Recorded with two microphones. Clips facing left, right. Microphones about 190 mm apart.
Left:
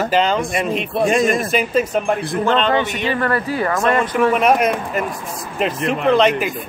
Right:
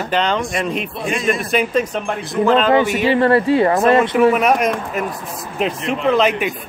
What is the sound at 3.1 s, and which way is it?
Speech, 25° right (ahead or behind).